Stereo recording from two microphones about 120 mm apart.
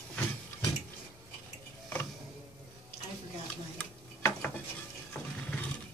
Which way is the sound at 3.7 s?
15° left (ahead or behind).